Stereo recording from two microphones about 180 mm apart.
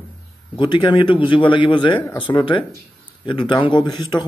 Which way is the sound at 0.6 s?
25° left (ahead or behind).